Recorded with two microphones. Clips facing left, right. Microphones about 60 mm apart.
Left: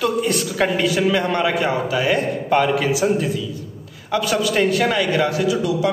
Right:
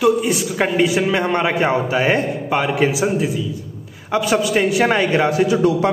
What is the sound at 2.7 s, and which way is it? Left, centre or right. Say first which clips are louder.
Speech: right 2 dB; right.